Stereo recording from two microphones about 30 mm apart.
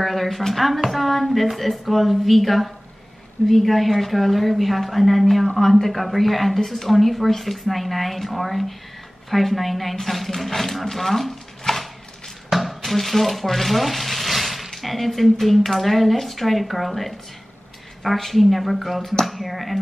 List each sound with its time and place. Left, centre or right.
0.0 s a woman's voice: centre
11.7 s a sound: centre
12.4 s frying: centre
15.3 s a woman's voice: centre